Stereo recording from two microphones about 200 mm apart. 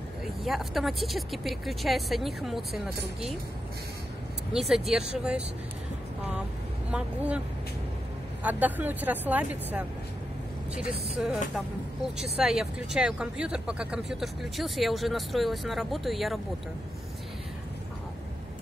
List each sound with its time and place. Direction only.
0.4 s speech: centre (ahead or behind)
4.5 s speech: centre (ahead or behind)
6.9 s speech: 5° right (ahead or behind)
11.5 s speech: 5° right (ahead or behind)